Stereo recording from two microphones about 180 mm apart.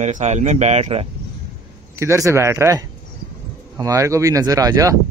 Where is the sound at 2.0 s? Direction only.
15° right (ahead or behind).